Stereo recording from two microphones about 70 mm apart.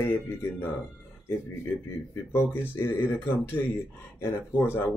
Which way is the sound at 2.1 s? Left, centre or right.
Left.